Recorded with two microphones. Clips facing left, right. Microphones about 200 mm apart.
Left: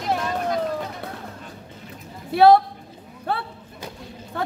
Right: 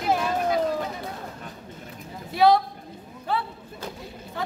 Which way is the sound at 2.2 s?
60° left (ahead or behind).